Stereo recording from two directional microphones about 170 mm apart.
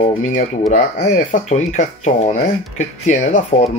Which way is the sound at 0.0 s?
45° left (ahead or behind).